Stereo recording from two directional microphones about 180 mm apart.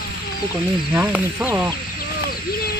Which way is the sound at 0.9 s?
10° right (ahead or behind).